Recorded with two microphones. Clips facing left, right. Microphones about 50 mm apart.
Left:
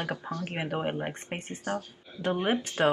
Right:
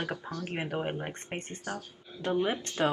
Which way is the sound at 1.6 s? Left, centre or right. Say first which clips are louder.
Left 5 dB; left.